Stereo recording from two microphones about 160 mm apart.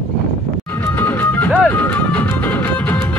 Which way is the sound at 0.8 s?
15° left (ahead or behind).